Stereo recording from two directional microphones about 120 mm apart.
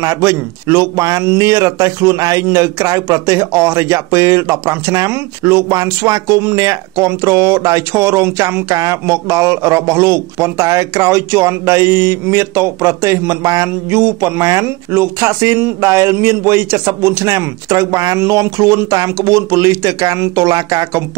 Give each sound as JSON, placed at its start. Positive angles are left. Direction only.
{"t": 0.0, "sound": "speech", "side_deg": -25}